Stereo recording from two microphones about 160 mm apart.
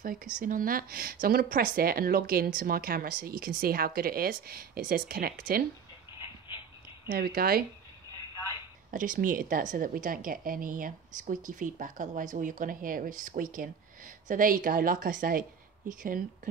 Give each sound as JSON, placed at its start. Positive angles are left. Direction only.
{"t": 0.0, "sound": "speech", "side_deg": -60}
{"t": 7.1, "sound": "speech", "side_deg": -70}
{"t": 8.9, "sound": "speech", "side_deg": -55}